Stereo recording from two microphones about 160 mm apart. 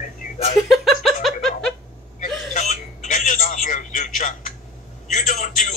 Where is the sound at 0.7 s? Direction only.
Centre (ahead or behind).